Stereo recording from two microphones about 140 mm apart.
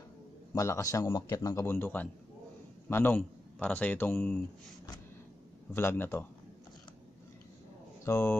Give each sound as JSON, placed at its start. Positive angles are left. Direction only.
{"t": 0.6, "sound": "a man's voice", "side_deg": 20}
{"t": 5.7, "sound": "a man's voice", "side_deg": 15}
{"t": 8.0, "sound": "speech", "side_deg": 20}